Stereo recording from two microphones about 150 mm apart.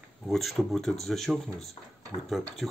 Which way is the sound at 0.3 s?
Centre (ahead or behind).